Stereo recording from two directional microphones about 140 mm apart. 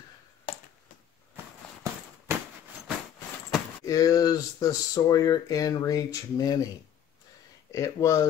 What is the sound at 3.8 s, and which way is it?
Speech, 25° left (ahead or behind).